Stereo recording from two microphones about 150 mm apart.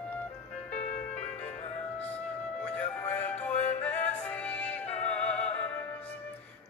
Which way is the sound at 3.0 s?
10° left (ahead or behind).